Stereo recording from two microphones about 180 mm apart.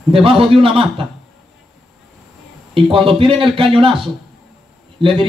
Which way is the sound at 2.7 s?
30° right (ahead or behind).